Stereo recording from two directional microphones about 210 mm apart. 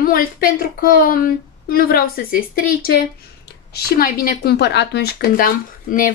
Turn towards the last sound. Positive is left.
turn(degrees=40)  # may be behind; listen again after turning